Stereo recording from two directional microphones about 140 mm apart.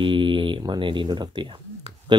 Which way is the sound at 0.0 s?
35° right (ahead or behind).